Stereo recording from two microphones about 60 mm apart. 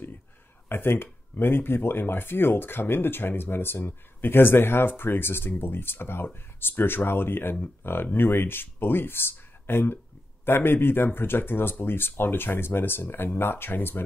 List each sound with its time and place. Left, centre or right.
0.7 s speech: left